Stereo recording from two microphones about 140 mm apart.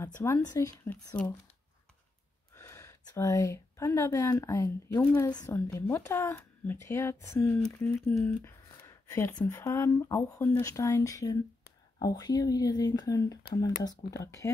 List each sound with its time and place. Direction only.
0.0 s speech: 20° left (ahead or behind)
2.5 s speech: 20° left (ahead or behind)